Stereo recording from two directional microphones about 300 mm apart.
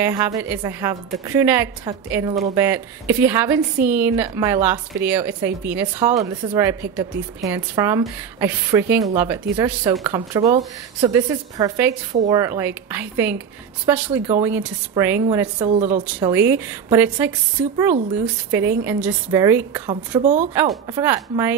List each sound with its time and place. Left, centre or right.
0.0 s a woman's voice: centre
15.6 s speech: right
16.0 s a woman's voice: centre